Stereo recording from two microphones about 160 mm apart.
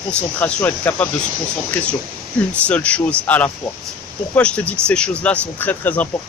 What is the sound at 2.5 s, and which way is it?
Speech, 10° left (ahead or behind).